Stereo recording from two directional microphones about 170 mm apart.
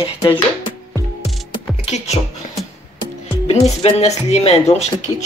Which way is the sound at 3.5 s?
40° left (ahead or behind).